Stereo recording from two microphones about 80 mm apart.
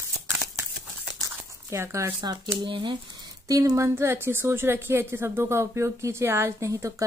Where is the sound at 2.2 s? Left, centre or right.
Right.